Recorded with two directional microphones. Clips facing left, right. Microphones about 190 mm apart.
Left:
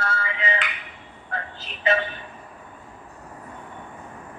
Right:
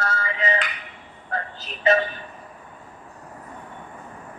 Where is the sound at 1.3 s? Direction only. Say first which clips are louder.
Right 3 dB; 40° right (ahead or behind).